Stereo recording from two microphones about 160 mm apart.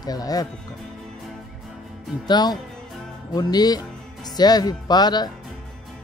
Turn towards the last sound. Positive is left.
turn(degrees=25)  # may be behind; listen again after turning